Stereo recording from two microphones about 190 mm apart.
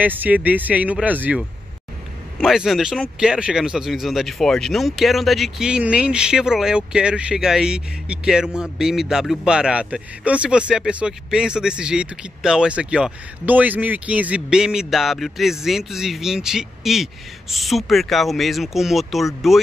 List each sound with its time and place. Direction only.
0.0 s speech: 10° right (ahead or behind)
2.4 s a man's voice: centre (ahead or behind)